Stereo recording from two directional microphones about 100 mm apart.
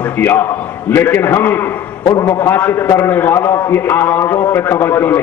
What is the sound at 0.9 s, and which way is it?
Speech, 25° left (ahead or behind).